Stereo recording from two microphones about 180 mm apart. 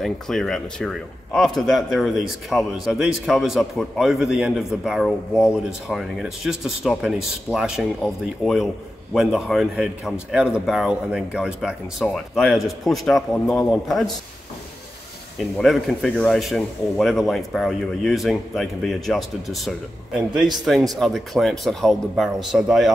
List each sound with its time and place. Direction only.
0.0 s a man's voice: centre (ahead or behind)
15.3 s a man's voice: centre (ahead or behind)